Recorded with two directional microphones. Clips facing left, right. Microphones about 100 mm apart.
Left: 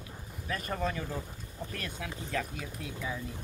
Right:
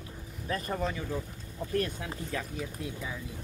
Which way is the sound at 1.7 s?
35° right (ahead or behind).